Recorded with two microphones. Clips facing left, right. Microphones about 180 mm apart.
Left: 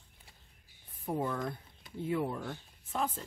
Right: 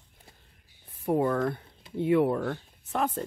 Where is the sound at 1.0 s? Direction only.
70° right (ahead or behind).